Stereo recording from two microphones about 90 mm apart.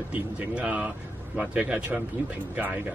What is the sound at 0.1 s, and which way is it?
Speech, 15° right (ahead or behind).